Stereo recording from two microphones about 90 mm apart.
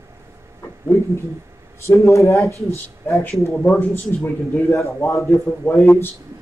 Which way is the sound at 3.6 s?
25° left (ahead or behind).